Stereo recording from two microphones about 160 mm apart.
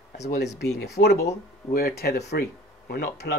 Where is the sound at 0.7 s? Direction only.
90° left.